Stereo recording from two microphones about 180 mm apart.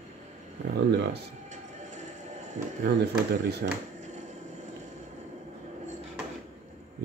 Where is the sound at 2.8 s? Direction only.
65° right (ahead or behind).